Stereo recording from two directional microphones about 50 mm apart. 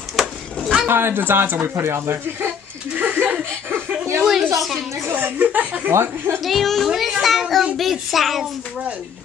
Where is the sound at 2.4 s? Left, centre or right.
Right.